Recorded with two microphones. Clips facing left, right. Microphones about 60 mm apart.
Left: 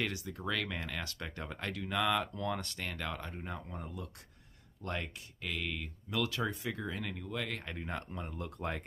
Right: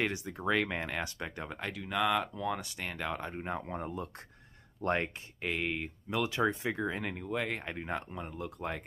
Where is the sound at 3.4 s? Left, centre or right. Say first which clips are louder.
Right 6 dB; right.